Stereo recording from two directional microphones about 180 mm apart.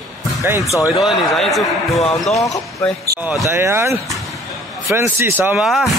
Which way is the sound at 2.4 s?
20° left (ahead or behind).